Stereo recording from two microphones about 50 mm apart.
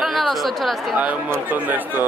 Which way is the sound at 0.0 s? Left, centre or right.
Centre.